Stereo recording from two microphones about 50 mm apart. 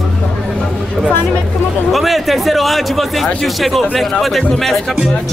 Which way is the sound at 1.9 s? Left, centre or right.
Centre.